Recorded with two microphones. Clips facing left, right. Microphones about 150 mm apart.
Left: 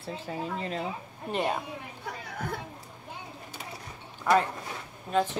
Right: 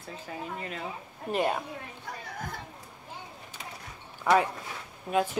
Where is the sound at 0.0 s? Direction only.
30° left (ahead or behind).